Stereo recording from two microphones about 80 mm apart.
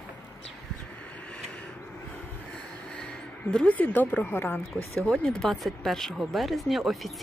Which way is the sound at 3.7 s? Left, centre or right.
Left.